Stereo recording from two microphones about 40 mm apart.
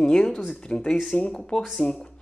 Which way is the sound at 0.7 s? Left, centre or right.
Left.